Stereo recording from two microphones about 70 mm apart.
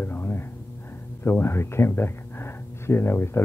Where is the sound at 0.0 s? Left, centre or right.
Left.